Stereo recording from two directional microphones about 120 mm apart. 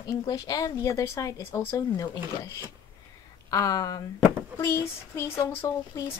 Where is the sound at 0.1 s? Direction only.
35° left (ahead or behind).